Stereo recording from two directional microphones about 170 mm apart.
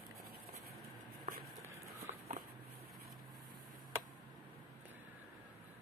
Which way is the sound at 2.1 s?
45° right (ahead or behind).